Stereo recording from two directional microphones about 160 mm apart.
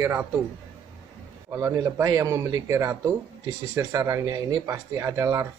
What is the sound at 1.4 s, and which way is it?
Speech, 20° right (ahead or behind).